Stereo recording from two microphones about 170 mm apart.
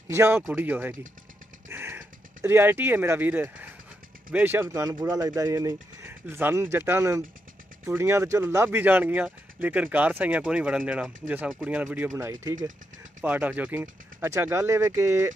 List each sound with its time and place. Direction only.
0.1 s speech: 15° right (ahead or behind)
1.7 s a sound: 15° right (ahead or behind)
4.3 s speech: 10° right (ahead or behind)